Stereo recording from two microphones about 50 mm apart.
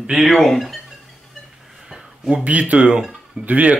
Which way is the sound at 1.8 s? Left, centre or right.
Centre.